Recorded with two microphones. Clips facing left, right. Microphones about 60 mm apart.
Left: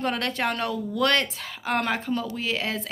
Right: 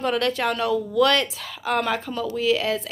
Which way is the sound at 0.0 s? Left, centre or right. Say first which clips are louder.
Right 4 dB; left.